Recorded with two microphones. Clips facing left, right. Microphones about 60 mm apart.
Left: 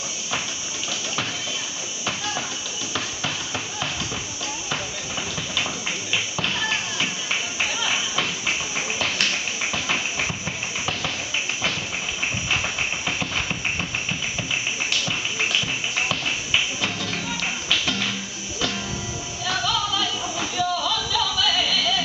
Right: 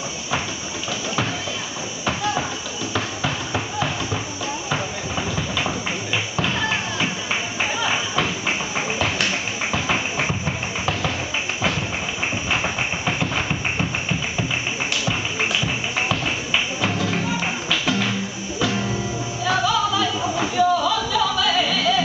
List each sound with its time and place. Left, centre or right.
2.0 s tap: centre
2.9 s music: centre
6.4 s music: centre
7.8 s tap: centre
12.4 s music: centre
15.6 s music: centre
19.4 s a sound: centre